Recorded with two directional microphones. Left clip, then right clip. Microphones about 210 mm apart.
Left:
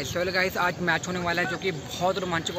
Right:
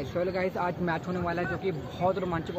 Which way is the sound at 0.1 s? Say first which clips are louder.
Left 4 dB; 5° right (ahead or behind).